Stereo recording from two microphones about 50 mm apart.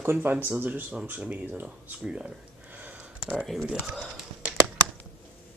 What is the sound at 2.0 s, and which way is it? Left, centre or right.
Speech, right.